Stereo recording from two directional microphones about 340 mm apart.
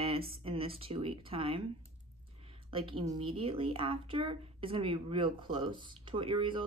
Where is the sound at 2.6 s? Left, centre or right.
Centre.